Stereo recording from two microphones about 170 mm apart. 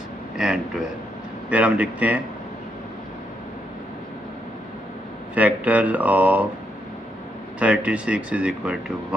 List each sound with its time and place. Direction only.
0.4 s speech: 5° right (ahead or behind)
5.3 s speech: 10° right (ahead or behind)
7.5 s speech: 10° right (ahead or behind)